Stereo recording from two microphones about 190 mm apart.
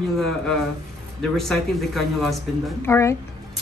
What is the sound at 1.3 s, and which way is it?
Speech, centre (ahead or behind).